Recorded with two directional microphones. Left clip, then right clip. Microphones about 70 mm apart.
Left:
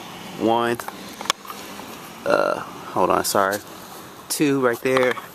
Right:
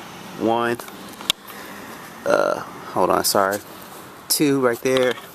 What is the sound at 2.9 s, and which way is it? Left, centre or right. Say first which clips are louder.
Speech: right 1 dB; right.